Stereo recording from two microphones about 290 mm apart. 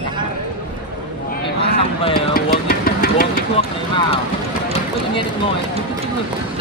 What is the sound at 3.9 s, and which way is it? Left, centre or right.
Speech, centre.